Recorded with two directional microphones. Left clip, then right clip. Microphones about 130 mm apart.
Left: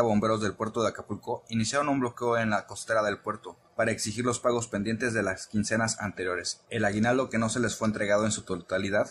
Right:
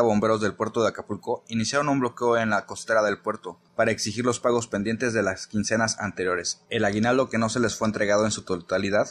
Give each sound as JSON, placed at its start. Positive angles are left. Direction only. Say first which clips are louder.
{"t": 0.0, "sound": "speech", "louder": "right 4 dB", "side_deg": -35}